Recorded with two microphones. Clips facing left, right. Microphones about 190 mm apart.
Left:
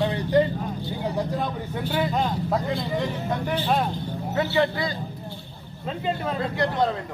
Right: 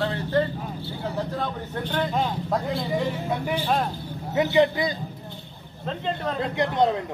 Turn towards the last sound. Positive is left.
turn(degrees=-20)  # may be behind; listen again after turning